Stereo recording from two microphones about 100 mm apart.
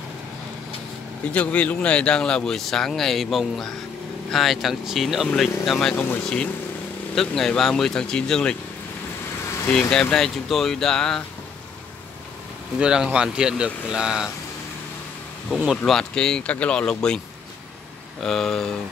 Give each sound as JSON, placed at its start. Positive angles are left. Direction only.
{"t": 1.3, "sound": "speech", "side_deg": 15}
{"t": 7.2, "sound": "speech", "side_deg": 5}
{"t": 9.7, "sound": "speech", "side_deg": 10}
{"t": 12.7, "sound": "speech", "side_deg": -10}
{"t": 15.5, "sound": "speech", "side_deg": -5}
{"t": 18.2, "sound": "speech", "side_deg": 5}